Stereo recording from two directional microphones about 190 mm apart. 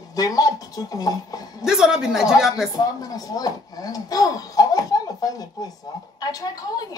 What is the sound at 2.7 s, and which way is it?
A woman's voice, 20° left (ahead or behind).